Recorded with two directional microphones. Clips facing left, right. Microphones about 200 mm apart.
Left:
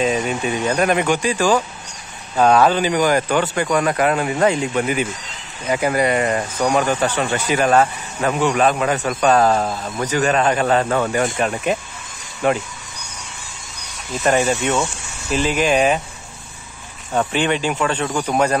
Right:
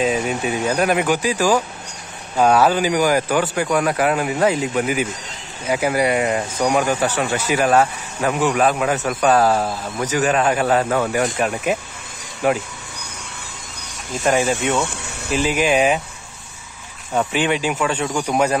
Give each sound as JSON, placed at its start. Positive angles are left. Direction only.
{"t": 0.0, "sound": "speech", "side_deg": -5}
{"t": 14.2, "sound": "speech", "side_deg": 0}
{"t": 14.9, "sound": "a sound", "side_deg": -60}
{"t": 15.3, "sound": "speech", "side_deg": -10}
{"t": 17.1, "sound": "speech", "side_deg": -5}